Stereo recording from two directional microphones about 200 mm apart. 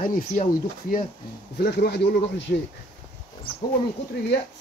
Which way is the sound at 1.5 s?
55° left (ahead or behind).